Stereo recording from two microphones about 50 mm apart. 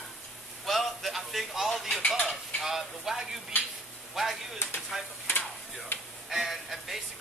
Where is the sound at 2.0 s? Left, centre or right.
Left.